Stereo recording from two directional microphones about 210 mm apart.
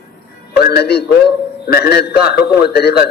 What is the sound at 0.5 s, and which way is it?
A man's voice, 50° left (ahead or behind).